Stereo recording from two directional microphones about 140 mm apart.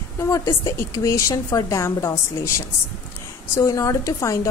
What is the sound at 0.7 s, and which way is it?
Speech, 20° left (ahead or behind).